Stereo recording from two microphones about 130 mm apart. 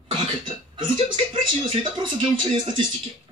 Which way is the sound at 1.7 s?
40° right (ahead or behind).